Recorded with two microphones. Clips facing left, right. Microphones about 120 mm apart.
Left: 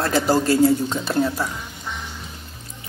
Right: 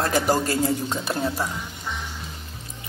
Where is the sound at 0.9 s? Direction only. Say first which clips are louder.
Left 4 dB; 15° right (ahead or behind).